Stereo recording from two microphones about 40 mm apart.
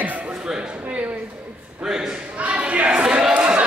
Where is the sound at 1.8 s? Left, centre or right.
Centre.